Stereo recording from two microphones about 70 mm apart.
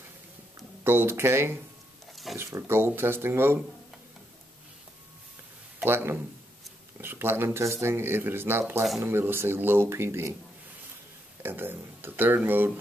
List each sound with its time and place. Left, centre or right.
0.8 s speech: right
5.9 s speech: right
11.4 s speech: right